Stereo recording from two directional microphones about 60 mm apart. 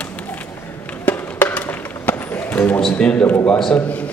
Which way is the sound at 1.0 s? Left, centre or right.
Left.